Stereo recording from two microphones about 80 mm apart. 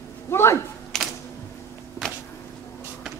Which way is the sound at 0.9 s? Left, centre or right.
Centre.